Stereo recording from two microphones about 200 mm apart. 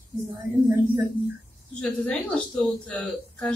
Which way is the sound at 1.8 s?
5° left (ahead or behind).